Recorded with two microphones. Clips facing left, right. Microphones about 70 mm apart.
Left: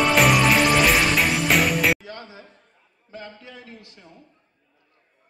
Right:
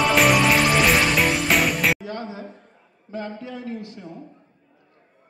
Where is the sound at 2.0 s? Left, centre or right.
Right.